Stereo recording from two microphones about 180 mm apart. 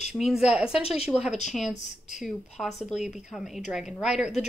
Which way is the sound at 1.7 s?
40° left (ahead or behind).